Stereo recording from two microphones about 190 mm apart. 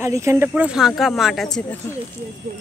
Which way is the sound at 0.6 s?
5° right (ahead or behind).